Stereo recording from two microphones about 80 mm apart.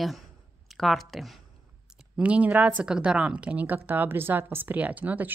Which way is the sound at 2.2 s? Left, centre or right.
Centre.